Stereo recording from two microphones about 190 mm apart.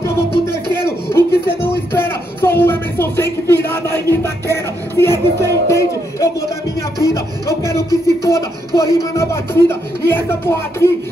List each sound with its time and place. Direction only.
0.5 s a sound: 15° left (ahead or behind)
7.0 s music: 15° left (ahead or behind)
9.1 s speech: 15° left (ahead or behind)